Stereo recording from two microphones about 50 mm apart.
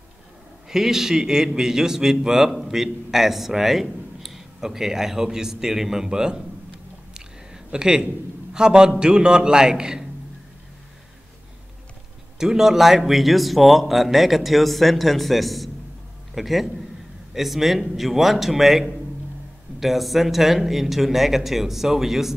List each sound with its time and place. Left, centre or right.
0.7 s a man's voice: centre
7.2 s a sound: centre
8.5 s a man's voice: centre
12.4 s speech: centre